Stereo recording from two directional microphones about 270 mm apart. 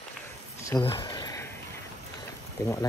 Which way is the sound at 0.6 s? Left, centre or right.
Centre.